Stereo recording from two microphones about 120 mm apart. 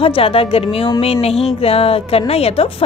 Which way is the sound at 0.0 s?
50° left (ahead or behind).